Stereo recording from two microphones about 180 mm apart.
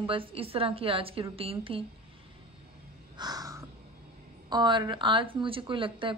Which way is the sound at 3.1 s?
20° right (ahead or behind).